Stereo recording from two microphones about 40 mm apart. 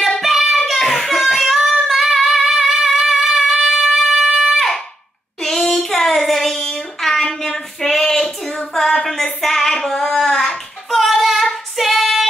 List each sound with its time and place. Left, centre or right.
0.2 s child singing: centre
2.4 s music: centre
3.9 s wind instrument: centre
5.4 s child singing: centre
8.1 s a sound: centre
8.5 s child singing: centre
9.0 s a sound: centre
10.1 s child singing: centre
10.9 s child singing: centre
11.7 s female singing: centre